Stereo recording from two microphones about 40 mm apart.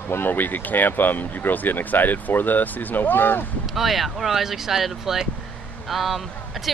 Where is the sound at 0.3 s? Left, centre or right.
Left.